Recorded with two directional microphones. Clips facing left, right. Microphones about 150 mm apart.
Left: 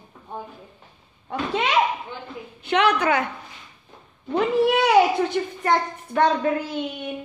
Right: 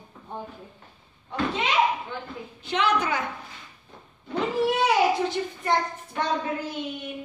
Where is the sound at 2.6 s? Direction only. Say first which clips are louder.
Left 4 dB; 60° left (ahead or behind).